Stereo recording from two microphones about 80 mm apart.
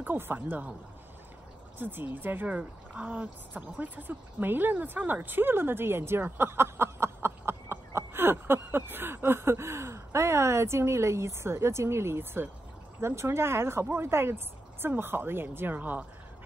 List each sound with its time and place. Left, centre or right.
0.0 s speech: right
1.8 s speech: right